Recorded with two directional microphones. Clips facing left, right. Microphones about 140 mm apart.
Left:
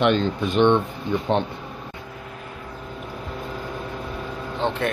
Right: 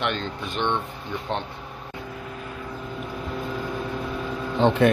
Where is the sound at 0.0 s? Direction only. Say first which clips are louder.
Left 8 dB; 20° left (ahead or behind).